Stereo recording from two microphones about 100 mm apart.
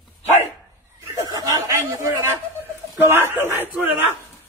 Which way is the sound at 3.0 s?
20° right (ahead or behind).